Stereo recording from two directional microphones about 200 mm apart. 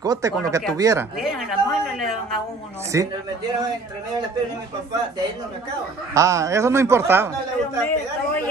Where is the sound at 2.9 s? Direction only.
15° right (ahead or behind).